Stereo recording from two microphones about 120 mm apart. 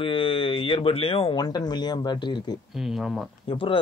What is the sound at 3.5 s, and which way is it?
Speech, 50° left (ahead or behind).